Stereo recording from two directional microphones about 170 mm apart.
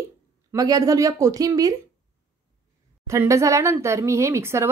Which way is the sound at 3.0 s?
15° right (ahead or behind).